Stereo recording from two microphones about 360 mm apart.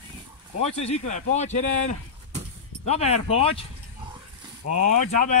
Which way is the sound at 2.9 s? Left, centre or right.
Centre.